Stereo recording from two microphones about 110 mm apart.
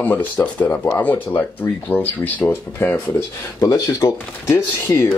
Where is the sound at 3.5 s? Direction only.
30° left (ahead or behind).